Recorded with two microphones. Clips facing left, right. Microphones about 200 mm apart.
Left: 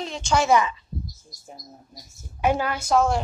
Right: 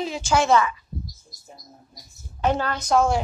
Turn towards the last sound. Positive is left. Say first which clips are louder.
# right 1 dB
turn(degrees=0)  # may be behind; listen again after turning